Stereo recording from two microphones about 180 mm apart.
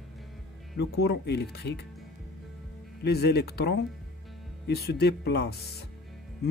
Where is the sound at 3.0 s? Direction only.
65° left (ahead or behind).